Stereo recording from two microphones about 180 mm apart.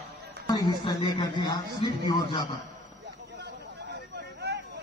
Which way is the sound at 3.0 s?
65° right (ahead or behind).